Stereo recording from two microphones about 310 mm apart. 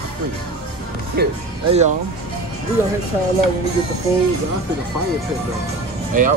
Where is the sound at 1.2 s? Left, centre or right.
Right.